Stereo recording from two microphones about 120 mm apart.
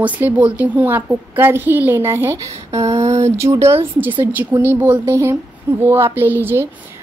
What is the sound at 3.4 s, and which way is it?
A woman's voice, 25° right (ahead or behind).